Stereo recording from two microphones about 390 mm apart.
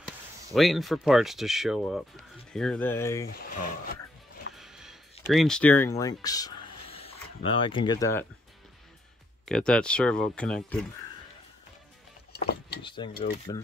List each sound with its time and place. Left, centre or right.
0.5 s speech: centre
3.3 s speech: left
4.6 s music: centre
5.3 s speech: centre
9.5 s speech: centre
12.3 s a sound: left
12.8 s cutlery: centre